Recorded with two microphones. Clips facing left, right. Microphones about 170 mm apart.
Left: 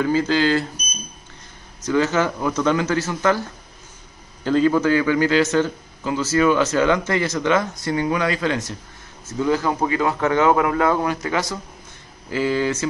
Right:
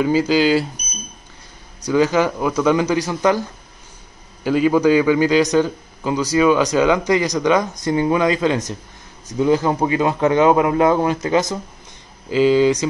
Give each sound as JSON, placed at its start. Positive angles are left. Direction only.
{"t": 0.0, "sound": "a man's voice", "side_deg": -10}
{"t": 1.9, "sound": "a man's voice", "side_deg": -10}